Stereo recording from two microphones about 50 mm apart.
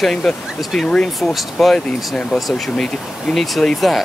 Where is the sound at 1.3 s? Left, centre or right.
Centre.